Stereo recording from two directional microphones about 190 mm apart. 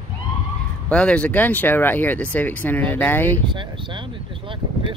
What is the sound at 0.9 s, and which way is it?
Speech, 5° left (ahead or behind).